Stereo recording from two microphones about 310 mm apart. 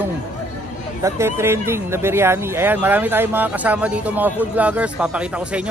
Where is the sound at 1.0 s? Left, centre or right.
Centre.